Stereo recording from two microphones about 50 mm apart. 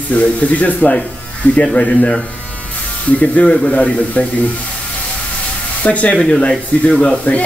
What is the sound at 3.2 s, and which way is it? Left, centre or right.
Speech, left.